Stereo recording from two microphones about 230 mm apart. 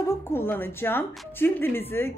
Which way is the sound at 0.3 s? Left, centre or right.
Centre.